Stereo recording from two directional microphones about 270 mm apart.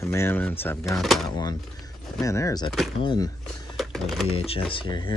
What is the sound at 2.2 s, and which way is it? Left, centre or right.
Speech, centre.